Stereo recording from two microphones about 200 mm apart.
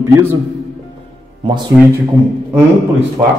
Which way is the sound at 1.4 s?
25° right (ahead or behind).